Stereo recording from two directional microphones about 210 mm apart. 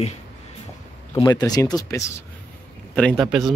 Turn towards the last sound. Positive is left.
turn(degrees=5)  # may be behind; listen again after turning